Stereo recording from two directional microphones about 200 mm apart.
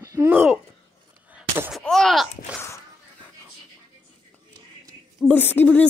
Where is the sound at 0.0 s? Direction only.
15° right (ahead or behind).